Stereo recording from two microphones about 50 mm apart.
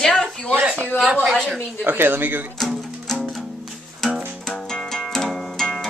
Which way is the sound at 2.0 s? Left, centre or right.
Right.